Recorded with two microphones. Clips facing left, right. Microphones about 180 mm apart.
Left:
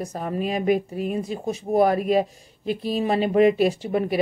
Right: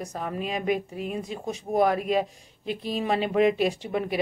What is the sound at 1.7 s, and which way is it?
Speech, 40° left (ahead or behind).